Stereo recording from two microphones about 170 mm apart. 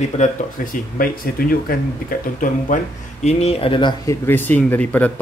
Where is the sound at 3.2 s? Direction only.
35° left (ahead or behind).